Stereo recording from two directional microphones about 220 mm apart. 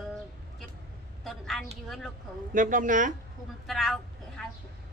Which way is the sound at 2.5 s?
35° right (ahead or behind).